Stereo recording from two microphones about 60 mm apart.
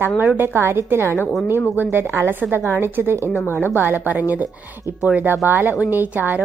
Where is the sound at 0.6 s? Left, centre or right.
Right.